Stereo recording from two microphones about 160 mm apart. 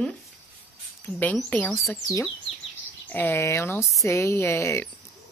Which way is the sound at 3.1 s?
10° left (ahead or behind).